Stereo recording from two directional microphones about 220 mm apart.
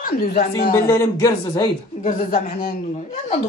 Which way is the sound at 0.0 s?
45° left (ahead or behind).